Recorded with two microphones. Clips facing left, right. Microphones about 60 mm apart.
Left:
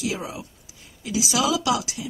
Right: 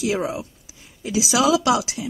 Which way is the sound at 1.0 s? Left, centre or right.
Right.